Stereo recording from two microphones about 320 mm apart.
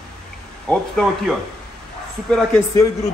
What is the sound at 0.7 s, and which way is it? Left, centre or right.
Speech, centre.